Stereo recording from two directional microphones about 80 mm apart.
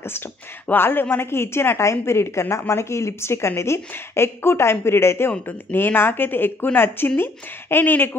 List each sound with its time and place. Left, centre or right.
0.7 s a woman's voice: left